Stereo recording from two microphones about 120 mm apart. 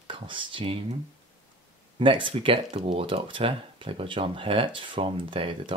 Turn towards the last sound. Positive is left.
turn(degrees=-45)  # may be behind; listen again after turning